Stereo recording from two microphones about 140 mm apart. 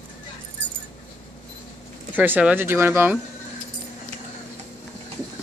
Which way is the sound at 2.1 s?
10° right (ahead or behind).